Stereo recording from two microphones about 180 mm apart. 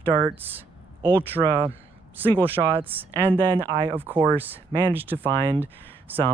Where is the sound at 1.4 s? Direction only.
5° right (ahead or behind).